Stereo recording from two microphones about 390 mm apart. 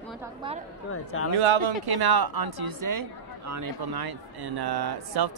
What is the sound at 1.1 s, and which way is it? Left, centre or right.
Speech, left.